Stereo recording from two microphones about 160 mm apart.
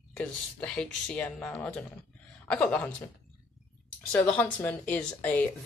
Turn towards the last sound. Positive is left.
turn(degrees=10)  # may be behind; listen again after turning